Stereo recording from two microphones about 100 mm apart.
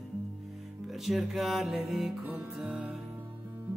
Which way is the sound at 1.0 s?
5° right (ahead or behind).